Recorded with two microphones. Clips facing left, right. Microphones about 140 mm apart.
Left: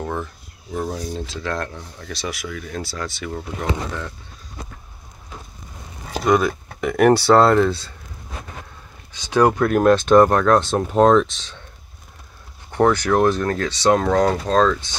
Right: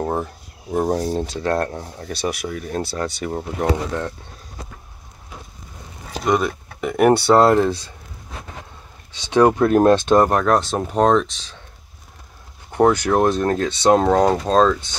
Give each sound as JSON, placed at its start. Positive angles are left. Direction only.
{"t": 0.0, "sound": "speech", "side_deg": -40}
{"t": 6.2, "sound": "speech", "side_deg": 0}
{"t": 9.3, "sound": "speech", "side_deg": -25}
{"t": 10.4, "sound": "speech", "side_deg": 0}
{"t": 12.7, "sound": "speech", "side_deg": -15}